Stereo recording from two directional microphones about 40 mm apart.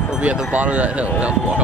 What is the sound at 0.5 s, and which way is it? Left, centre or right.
Speech, right.